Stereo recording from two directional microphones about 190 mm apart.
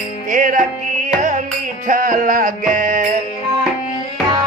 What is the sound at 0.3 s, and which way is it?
Music, 45° right (ahead or behind).